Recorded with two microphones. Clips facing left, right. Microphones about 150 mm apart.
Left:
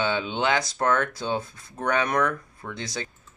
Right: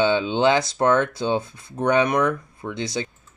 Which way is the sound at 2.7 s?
25° right (ahead or behind).